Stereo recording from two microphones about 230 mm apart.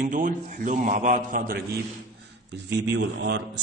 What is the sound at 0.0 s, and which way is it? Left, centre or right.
A man's voice, right.